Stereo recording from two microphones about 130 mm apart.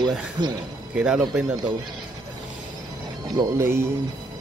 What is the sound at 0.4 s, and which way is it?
Speech, 35° right (ahead or behind).